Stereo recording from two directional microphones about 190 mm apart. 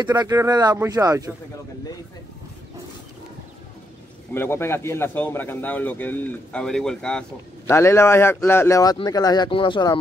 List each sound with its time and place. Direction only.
0.0 s speech: 20° right (ahead or behind)
4.3 s speech: 10° left (ahead or behind)